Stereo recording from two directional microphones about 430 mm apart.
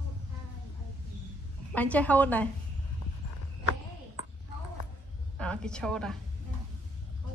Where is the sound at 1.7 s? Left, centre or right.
Centre.